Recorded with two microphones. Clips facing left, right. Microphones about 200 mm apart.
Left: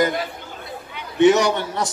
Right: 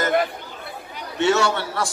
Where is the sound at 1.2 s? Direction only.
15° left (ahead or behind).